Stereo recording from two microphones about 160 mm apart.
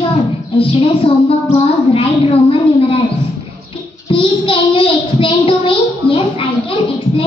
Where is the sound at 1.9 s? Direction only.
35° left (ahead or behind).